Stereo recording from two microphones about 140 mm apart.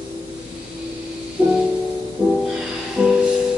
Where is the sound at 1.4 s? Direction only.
10° right (ahead or behind).